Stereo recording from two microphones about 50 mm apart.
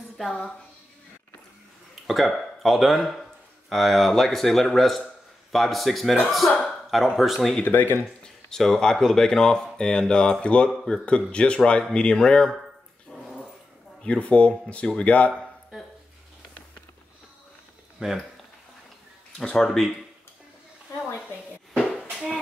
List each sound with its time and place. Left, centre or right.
0.2 s speech: centre
2.0 s speech: centre
7.6 s speech: left
8.2 s speech: centre
13.1 s dog: centre
14.0 s speech: left
17.9 s speech: centre
19.5 s speech: centre